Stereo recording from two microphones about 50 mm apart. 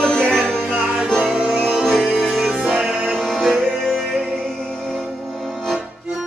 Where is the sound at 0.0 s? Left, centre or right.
Centre.